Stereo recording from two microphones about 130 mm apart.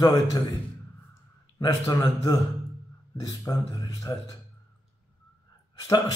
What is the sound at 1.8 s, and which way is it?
Speech, 25° left (ahead or behind).